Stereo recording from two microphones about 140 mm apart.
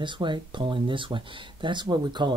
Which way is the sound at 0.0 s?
35° right (ahead or behind).